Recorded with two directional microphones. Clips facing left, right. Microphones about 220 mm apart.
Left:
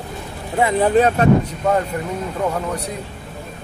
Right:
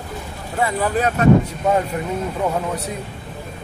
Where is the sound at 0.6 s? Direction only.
25° left (ahead or behind).